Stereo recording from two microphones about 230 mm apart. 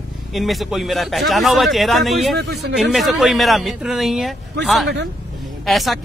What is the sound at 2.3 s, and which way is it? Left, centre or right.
Speech, right.